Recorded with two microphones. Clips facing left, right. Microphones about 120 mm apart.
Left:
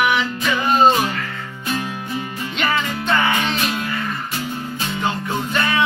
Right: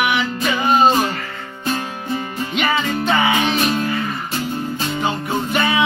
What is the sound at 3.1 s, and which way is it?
Music, 10° right (ahead or behind).